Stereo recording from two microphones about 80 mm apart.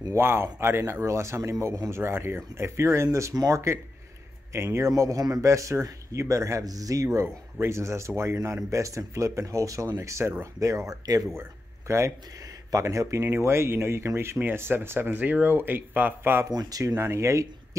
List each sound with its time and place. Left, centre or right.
0.1 s speech: right
16.4 s speech: right